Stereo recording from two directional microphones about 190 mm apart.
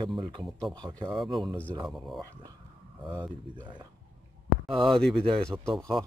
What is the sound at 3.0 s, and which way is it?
Speech, 25° right (ahead or behind).